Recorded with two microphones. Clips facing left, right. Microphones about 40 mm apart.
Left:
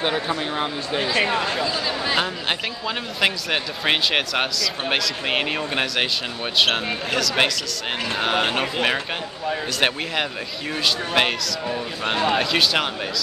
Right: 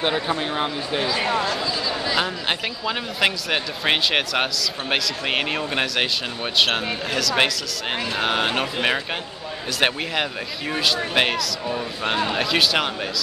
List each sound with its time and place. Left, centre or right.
0.0 s speech: centre
1.2 s speech: left
2.4 s speech: centre